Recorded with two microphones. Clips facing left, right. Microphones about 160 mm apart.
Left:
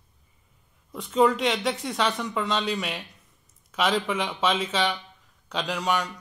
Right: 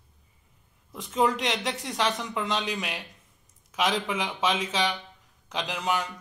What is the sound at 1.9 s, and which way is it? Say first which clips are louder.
Speech: left 2 dB; 15° right (ahead or behind).